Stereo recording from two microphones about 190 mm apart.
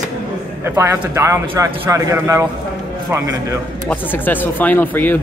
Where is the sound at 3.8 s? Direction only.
10° left (ahead or behind).